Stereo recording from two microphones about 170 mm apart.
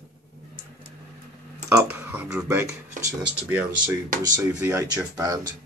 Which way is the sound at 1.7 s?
10° right (ahead or behind).